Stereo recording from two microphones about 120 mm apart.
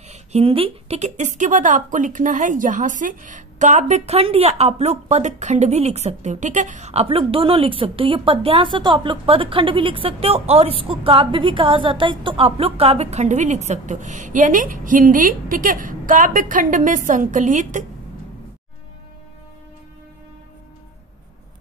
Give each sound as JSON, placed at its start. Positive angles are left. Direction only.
{"t": 0.1, "sound": "a woman's voice", "side_deg": -60}